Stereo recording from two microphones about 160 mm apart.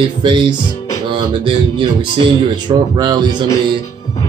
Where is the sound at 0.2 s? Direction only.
30° right (ahead or behind).